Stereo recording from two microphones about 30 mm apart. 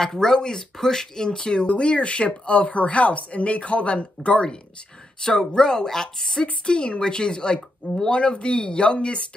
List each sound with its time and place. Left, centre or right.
0.0 s speech: centre
1.8 s a woman's voice: left
5.2 s speech: left
6.4 s speech: left